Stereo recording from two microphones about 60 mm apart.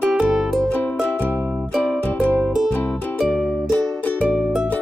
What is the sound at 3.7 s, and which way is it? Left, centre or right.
Music, left.